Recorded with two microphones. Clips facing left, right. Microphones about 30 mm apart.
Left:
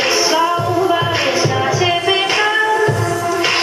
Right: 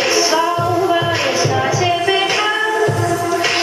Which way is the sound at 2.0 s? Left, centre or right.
Centre.